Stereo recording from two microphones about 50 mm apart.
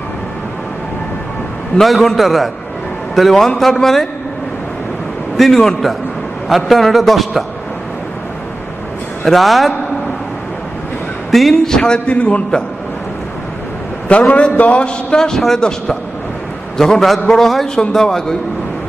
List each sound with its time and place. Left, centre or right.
1.8 s a man's voice: centre
5.4 s a man's voice: centre
9.2 s a man's voice: centre
11.5 s a man's voice: centre
14.1 s a man's voice: left; by 15.6 s centre
16.7 s a man's voice: centre